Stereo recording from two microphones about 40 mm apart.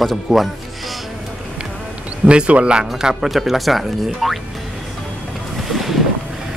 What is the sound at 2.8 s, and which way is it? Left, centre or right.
Speech, centre.